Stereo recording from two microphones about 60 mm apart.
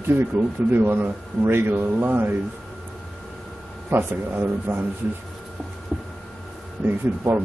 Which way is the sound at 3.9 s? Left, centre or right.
Right.